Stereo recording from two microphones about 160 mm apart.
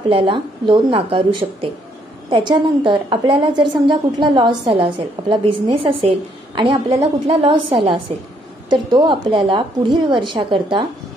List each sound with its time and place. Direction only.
0.1 s a woman's voice: 30° right (ahead or behind)